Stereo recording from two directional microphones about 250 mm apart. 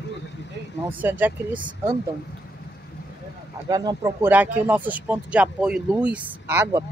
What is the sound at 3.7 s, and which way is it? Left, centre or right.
Speech, centre.